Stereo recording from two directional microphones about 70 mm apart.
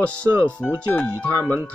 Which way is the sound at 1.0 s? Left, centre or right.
Centre.